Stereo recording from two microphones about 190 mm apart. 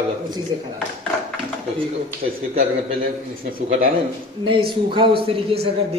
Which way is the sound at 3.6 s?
45° right (ahead or behind).